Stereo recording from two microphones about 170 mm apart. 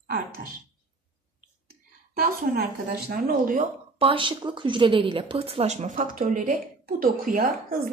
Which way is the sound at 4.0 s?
30° right (ahead or behind).